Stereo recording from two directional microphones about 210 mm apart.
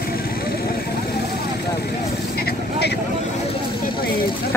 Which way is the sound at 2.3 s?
50° left (ahead or behind).